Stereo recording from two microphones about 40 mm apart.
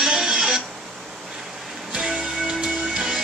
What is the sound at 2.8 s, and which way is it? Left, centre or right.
Music, centre.